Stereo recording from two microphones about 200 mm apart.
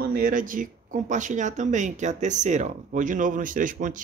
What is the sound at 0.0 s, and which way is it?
Speech, 45° right (ahead or behind).